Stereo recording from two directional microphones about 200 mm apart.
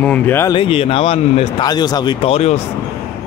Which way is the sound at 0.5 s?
25° left (ahead or behind).